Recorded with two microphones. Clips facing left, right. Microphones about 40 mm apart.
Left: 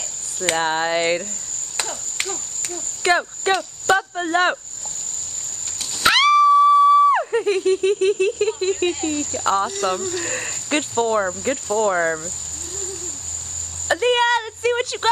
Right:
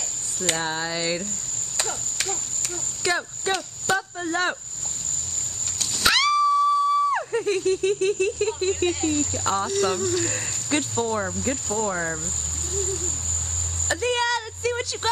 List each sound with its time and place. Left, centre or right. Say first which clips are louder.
0.5 s speech: left 7 dB; left
3.0 s speech: left 7 dB; left
6.0 s a sound: left 5 dB; left
6.3 s theremin: left 7 dB; left
7.1 s speech: left 6 dB; centre
10.3 s speech: left 3 dB; left
14.0 s speech: left 6 dB; left